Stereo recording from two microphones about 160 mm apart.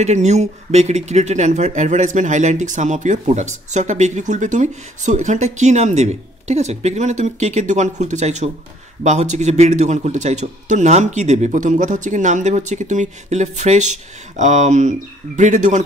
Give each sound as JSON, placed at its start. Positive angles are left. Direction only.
{"t": 0.0, "sound": "speech", "side_deg": -45}